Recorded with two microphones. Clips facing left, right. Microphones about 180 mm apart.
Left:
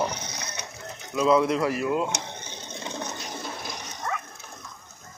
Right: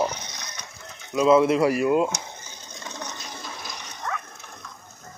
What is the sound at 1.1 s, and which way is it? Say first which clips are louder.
Speech: right 4 dB; 5° right (ahead or behind).